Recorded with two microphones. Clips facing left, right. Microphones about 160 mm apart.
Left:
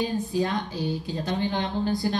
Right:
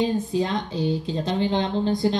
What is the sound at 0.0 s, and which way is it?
A woman's voice, 20° right (ahead or behind).